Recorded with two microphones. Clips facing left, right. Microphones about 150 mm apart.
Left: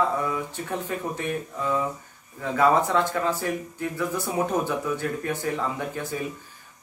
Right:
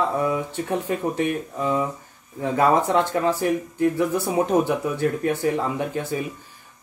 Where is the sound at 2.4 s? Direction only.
20° right (ahead or behind).